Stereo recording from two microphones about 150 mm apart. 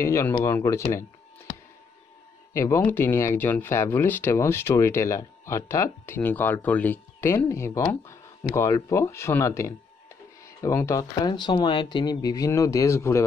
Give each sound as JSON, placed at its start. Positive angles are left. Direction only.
{"t": 0.0, "sound": "speech", "side_deg": 20}
{"t": 1.5, "sound": "a sound", "side_deg": 35}
{"t": 2.5, "sound": "speech", "side_deg": 20}